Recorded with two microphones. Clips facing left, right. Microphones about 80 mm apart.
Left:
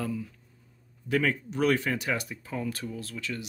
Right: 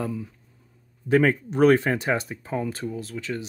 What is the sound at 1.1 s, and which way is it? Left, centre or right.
Speech, right.